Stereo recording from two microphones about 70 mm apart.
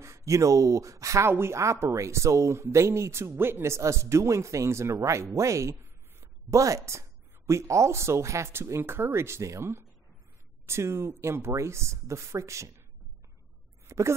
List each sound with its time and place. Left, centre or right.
0.0 s speech: right
10.7 s speech: right
13.8 s a sound: right